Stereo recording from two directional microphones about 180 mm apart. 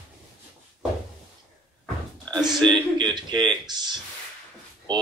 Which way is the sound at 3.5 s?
25° right (ahead or behind).